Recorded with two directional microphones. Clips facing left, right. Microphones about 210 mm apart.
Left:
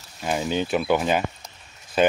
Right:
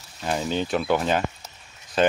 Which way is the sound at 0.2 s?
10° left (ahead or behind).